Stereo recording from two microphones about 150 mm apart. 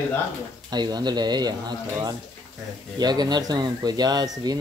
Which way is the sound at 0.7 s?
30° right (ahead or behind).